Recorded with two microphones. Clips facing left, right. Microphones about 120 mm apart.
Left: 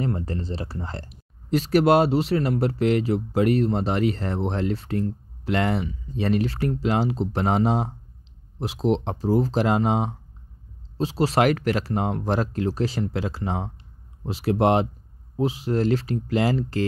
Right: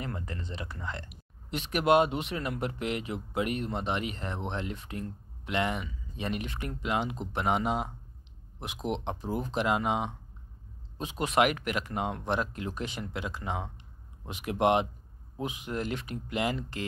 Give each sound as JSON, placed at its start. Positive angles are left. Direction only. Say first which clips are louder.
{"t": 0.0, "sound": "speech", "louder": "left 10 dB", "side_deg": 35}